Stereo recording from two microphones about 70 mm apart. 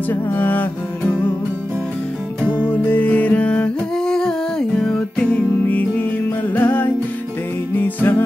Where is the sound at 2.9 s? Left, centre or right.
Left.